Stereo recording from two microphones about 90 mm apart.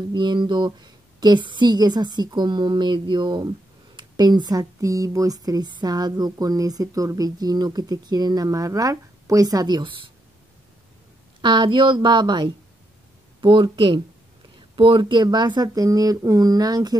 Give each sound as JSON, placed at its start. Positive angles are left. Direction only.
{"t": 0.1, "sound": "speech", "side_deg": -60}
{"t": 11.4, "sound": "speech", "side_deg": -55}
{"t": 15.2, "sound": "speech", "side_deg": -50}